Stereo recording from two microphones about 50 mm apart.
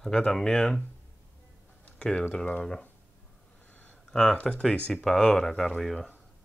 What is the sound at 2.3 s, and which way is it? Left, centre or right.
Speech, left.